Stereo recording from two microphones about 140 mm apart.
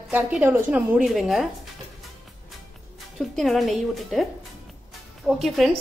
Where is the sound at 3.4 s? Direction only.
Centre (ahead or behind).